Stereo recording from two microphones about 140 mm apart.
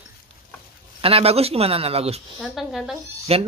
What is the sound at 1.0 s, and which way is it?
Speech, 45° right (ahead or behind).